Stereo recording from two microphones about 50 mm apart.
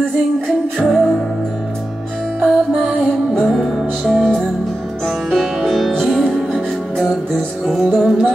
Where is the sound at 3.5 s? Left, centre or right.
Centre.